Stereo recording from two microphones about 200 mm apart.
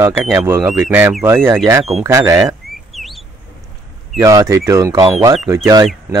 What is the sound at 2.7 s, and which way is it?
Bird, centre (ahead or behind).